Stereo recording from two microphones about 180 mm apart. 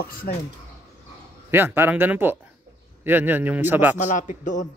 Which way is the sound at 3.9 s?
45° left (ahead or behind).